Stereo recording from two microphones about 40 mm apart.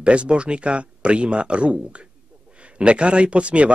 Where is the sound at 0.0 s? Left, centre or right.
Right.